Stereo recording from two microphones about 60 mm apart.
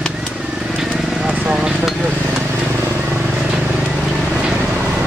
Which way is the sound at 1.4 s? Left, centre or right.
Centre.